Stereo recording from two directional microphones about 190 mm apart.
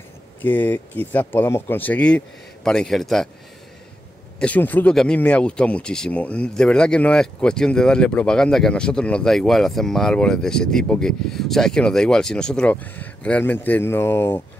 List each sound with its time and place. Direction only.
0.4 s speech: 10° left (ahead or behind)
4.4 s speech: 10° left (ahead or behind)